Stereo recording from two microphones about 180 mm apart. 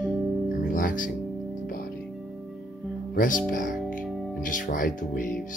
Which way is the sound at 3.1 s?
50° left (ahead or behind).